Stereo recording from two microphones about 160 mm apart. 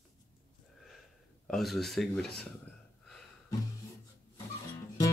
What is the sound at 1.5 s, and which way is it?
Speech, centre (ahead or behind).